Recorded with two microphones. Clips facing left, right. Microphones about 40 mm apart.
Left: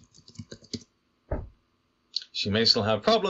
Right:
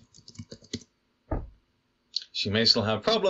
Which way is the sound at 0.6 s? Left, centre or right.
Right.